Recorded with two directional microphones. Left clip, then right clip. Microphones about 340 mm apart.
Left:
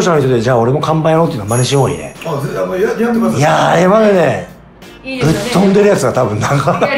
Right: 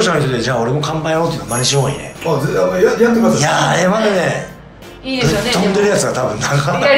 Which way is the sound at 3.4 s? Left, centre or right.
Centre.